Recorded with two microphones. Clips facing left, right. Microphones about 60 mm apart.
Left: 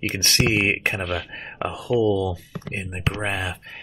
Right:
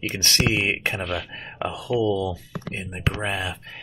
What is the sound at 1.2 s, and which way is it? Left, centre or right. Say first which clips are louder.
Speech: left 1 dB; left.